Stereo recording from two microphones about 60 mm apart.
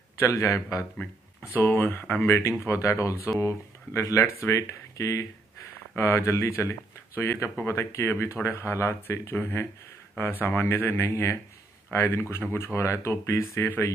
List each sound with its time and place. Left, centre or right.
0.3 s speech: left
1.5 s speech: left
2.3 s speech: left